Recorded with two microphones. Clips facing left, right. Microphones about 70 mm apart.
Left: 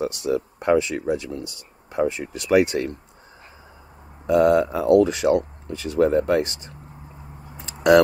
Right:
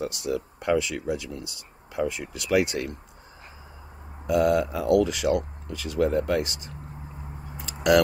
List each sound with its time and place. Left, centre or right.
0.0 s speech: left
4.3 s speech: left
7.5 s a sound: left